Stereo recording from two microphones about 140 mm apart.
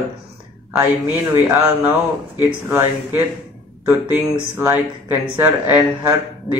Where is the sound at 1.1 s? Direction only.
15° right (ahead or behind).